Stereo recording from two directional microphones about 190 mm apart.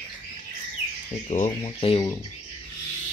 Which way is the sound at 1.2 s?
35° left (ahead or behind).